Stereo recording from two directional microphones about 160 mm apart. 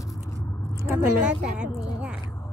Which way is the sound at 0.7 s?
20° right (ahead or behind).